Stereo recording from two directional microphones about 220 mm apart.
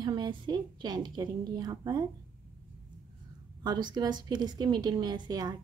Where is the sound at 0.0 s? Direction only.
20° right (ahead or behind).